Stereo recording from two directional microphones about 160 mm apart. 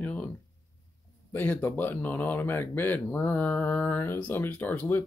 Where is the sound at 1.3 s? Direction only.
10° left (ahead or behind).